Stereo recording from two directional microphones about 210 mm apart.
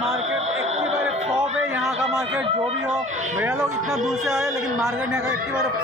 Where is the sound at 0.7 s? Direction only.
30° right (ahead or behind).